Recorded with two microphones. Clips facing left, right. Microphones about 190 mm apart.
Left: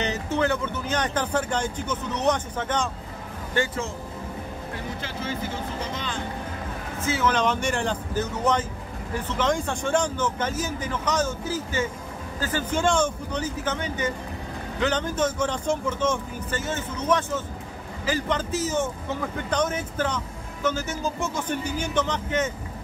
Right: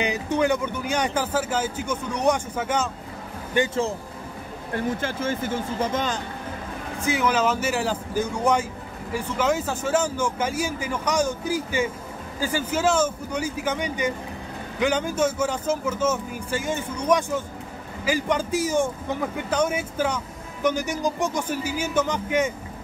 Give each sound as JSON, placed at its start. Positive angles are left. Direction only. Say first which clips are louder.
{"t": 0.0, "sound": "speech", "louder": "right 2 dB", "side_deg": -10}
{"t": 3.5, "sound": "a man's voice", "louder": "right 4 dB", "side_deg": -20}
{"t": 4.7, "sound": "speech", "louder": "right 10 dB", "side_deg": -50}
{"t": 7.0, "sound": "speech", "louder": "right 1 dB", "side_deg": -15}